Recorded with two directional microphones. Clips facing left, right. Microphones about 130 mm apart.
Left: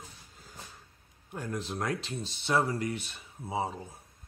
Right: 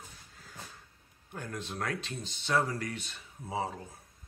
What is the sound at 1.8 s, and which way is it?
Speech, 30° left (ahead or behind).